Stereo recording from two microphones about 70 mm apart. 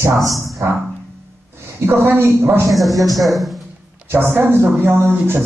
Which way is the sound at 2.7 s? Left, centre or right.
Centre.